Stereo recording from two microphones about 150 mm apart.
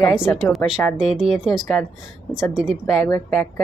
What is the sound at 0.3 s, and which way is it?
Speech, 5° left (ahead or behind).